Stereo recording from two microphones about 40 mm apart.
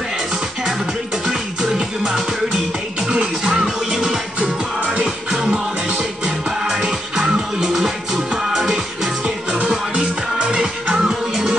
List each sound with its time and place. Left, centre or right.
0.7 s music: centre
3.9 s music: centre
5.0 s music: centre